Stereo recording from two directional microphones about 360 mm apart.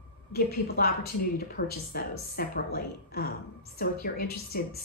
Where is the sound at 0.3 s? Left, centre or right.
Left.